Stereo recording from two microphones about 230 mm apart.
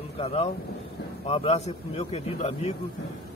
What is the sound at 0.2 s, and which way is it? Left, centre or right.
A man's voice, left.